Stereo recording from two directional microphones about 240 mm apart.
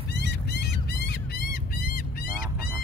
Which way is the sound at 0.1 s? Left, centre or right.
Left.